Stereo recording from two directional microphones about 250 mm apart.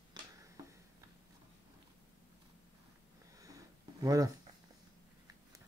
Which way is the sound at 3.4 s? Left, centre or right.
Centre.